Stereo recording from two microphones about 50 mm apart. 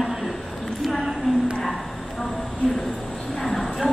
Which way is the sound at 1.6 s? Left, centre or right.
Centre.